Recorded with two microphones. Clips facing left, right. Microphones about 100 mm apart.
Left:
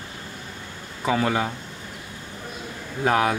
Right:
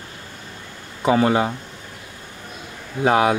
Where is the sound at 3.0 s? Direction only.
20° right (ahead or behind).